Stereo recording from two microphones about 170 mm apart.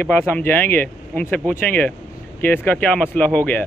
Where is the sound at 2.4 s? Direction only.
10° left (ahead or behind).